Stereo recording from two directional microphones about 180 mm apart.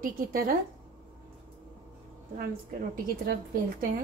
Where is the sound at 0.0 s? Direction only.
50° right (ahead or behind).